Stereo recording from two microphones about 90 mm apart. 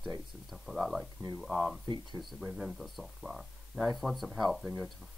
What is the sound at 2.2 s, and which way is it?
Speech, 5° right (ahead or behind).